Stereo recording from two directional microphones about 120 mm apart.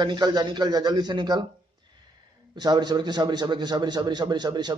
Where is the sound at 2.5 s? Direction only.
35° right (ahead or behind).